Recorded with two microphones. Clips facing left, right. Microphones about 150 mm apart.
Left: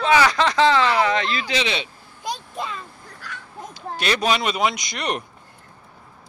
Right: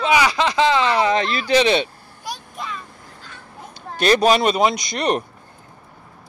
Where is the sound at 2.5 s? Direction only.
30° left (ahead or behind).